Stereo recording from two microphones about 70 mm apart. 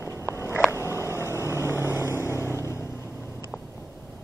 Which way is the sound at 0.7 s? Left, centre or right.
Left.